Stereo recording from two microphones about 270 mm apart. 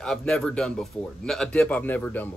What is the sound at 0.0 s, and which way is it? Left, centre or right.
Speech, centre.